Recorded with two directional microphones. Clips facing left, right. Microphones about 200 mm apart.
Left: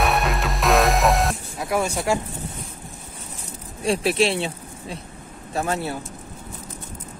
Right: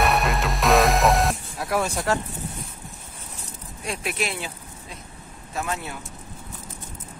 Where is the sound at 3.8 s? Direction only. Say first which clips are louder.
Left 9 dB; 30° left (ahead or behind).